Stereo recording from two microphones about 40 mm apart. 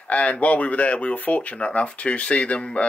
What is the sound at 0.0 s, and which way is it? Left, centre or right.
Speech, left.